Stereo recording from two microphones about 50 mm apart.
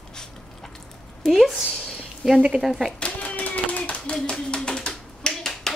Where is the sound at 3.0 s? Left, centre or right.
Left.